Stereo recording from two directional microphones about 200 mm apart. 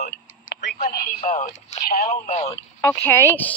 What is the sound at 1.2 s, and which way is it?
Speech, 40° left (ahead or behind).